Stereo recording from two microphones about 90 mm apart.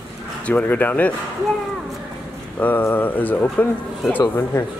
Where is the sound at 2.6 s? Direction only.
20° left (ahead or behind).